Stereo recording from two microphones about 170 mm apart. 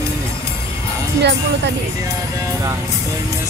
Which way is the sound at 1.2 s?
90° right.